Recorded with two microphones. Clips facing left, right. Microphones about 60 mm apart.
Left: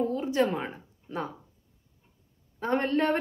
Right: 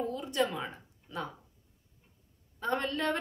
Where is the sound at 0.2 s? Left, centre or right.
Left.